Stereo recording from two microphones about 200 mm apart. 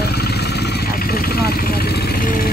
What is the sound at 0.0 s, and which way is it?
Vehicle, 55° left (ahead or behind).